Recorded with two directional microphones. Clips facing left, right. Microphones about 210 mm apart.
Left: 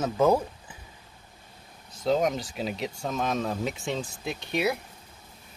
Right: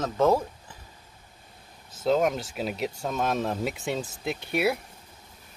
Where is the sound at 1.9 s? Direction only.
5° right (ahead or behind).